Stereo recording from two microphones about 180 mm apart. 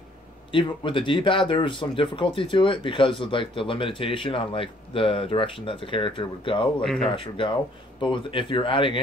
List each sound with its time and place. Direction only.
0.5 s speech: 30° left (ahead or behind)
6.8 s speech: centre (ahead or behind)
7.1 s speech: 30° left (ahead or behind)